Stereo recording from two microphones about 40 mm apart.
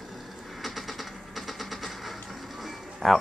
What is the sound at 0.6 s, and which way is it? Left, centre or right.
Vehicle, centre.